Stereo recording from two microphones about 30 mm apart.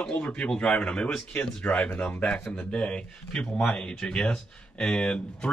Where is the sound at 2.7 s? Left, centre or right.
Left.